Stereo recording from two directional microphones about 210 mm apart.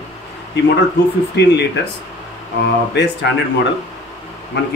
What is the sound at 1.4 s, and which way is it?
Speech, 55° left (ahead or behind).